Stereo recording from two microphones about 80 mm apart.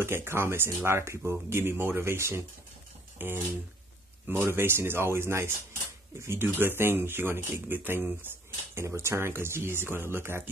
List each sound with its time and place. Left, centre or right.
0.0 s speech: right
8.7 s speech: right